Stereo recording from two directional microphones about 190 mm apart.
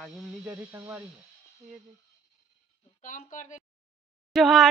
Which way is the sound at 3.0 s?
45° left (ahead or behind).